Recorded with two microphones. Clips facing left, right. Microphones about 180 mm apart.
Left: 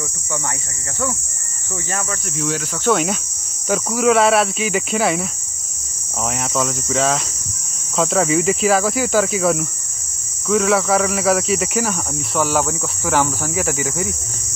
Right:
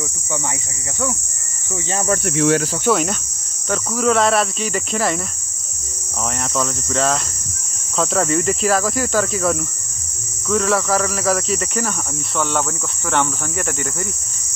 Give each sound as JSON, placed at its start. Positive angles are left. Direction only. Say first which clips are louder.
{"t": 2.0, "sound": "speech", "louder": "right 8 dB", "side_deg": -70}
{"t": 2.9, "sound": "speech", "louder": "left 1 dB", "side_deg": 0}
{"t": 6.3, "sound": "speech", "louder": "left 1 dB", "side_deg": 0}